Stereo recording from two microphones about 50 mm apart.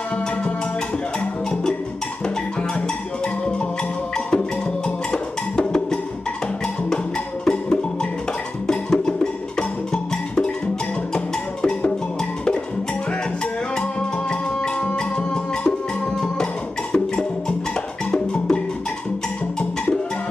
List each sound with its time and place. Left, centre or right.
1.5 s music: centre
4.3 s music: centre
7.4 s music: centre
14.3 s music: centre
16.9 s music: centre